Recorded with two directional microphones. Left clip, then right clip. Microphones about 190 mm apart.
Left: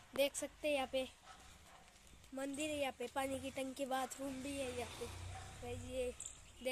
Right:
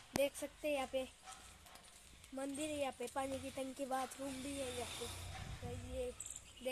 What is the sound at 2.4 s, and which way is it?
Speech, 5° right (ahead or behind).